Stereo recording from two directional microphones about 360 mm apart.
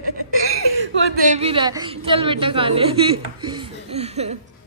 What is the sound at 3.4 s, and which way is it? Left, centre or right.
Chuckle, centre.